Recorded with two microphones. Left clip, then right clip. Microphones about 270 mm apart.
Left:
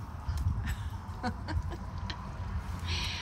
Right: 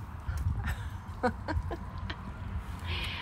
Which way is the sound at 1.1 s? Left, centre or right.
Centre.